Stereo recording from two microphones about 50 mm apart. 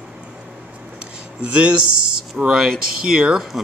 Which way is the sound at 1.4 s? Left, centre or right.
Right.